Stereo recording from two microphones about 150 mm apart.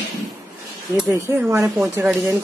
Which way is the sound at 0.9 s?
15° right (ahead or behind).